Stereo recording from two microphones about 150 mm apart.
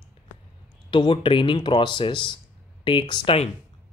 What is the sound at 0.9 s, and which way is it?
Speech, 35° left (ahead or behind).